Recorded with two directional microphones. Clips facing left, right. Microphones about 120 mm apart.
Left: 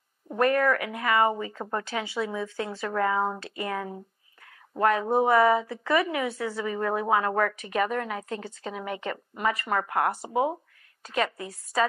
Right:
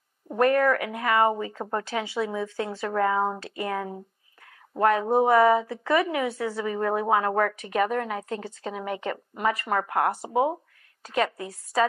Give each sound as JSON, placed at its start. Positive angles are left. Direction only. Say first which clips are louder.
{"t": 0.4, "sound": "a woman's voice", "louder": "right 2 dB", "side_deg": -40}
{"t": 3.3, "sound": "a woman's voice", "louder": "right 2 dB", "side_deg": -40}
{"t": 5.0, "sound": "a woman's voice", "louder": "right 2 dB", "side_deg": -25}
{"t": 11.1, "sound": "a woman's voice", "louder": "right 2 dB", "side_deg": -45}